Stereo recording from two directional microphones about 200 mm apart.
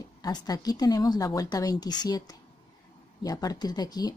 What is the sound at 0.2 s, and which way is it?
Speech, 20° left (ahead or behind).